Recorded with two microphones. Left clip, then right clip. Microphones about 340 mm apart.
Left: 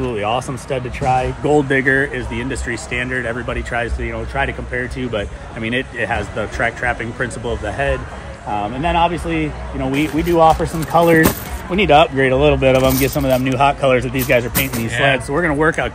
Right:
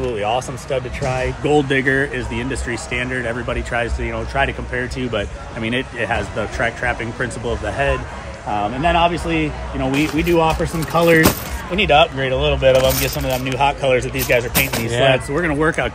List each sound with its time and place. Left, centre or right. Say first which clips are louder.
0.0 s a sound: even; left
0.4 s speech: even; left
1.4 s speech: right 2 dB; centre
10.2 s speech: left 5 dB; centre
10.5 s speech: left 4 dB; centre
11.7 s speech: left 2 dB; centre
12.0 s speech: left 3 dB; left
13.0 s speech: left 5 dB; centre
14.5 s speech: right 2 dB; centre
14.9 s speech: even; centre
15.3 s speech: left 2 dB; centre